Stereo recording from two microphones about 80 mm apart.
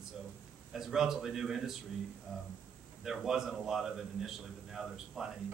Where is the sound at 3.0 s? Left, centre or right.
Centre.